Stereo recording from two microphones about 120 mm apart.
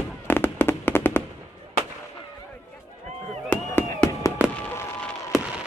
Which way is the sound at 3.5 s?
15° left (ahead or behind).